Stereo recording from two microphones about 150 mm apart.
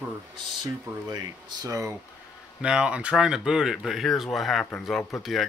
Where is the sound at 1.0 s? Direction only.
25° right (ahead or behind).